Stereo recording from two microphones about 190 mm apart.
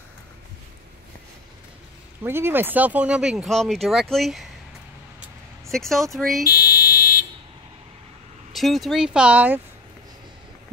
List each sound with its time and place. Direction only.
2.2 s speech: 10° right (ahead or behind)
5.7 s speech: centre (ahead or behind)
6.4 s fire alarm: 55° left (ahead or behind)
8.5 s speech: centre (ahead or behind)